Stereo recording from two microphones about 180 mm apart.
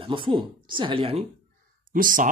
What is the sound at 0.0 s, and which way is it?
Speech, 25° right (ahead or behind).